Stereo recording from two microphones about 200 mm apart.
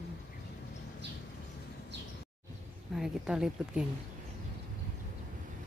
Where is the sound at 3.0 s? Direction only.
5° right (ahead or behind).